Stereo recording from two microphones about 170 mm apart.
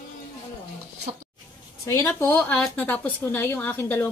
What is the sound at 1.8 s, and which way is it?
A woman's voice, 15° left (ahead or behind).